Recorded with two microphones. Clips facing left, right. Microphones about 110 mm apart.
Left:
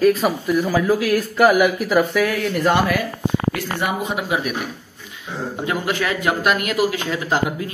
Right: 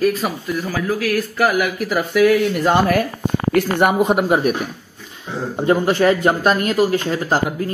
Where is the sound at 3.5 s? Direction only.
55° right (ahead or behind).